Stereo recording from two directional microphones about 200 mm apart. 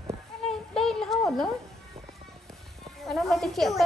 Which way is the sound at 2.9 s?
Centre (ahead or behind).